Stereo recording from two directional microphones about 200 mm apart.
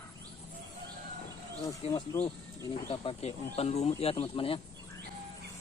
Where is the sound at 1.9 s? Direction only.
15° left (ahead or behind).